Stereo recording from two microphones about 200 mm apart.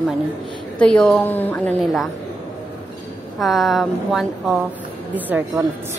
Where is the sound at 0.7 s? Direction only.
5° left (ahead or behind).